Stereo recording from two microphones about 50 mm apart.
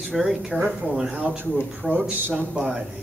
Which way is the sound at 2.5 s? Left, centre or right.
Centre.